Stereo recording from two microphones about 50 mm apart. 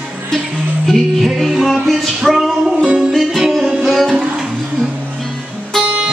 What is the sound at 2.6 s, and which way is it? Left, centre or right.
Music, centre.